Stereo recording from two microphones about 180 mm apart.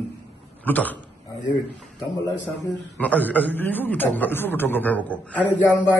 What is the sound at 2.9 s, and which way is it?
A man's voice, 10° left (ahead or behind).